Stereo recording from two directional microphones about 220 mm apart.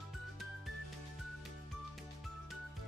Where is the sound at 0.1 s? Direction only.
Centre (ahead or behind).